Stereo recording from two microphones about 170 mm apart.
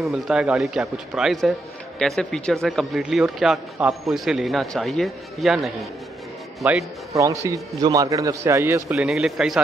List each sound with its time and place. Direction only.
0.0 s a man's voice: 5° right (ahead or behind)
8.9 s speech: 5° right (ahead or behind)